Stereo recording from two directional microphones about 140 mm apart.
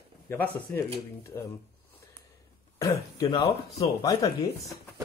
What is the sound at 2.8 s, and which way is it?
Speech, 25° left (ahead or behind).